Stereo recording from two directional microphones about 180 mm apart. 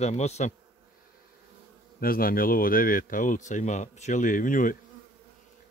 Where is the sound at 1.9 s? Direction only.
55° left (ahead or behind).